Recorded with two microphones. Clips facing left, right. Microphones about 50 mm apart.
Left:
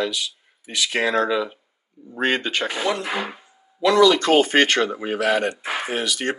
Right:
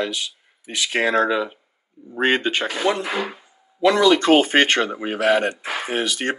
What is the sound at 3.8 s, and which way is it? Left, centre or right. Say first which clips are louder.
Speech: even; right.